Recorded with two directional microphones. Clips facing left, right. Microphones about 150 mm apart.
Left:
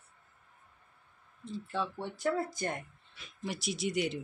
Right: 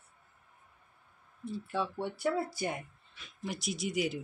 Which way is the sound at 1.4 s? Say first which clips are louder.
Right 1 dB; 10° right (ahead or behind).